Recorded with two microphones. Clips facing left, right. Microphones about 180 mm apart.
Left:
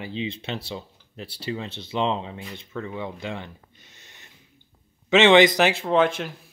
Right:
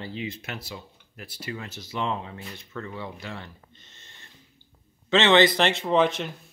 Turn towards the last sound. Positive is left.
turn(degrees=0)  # may be behind; listen again after turning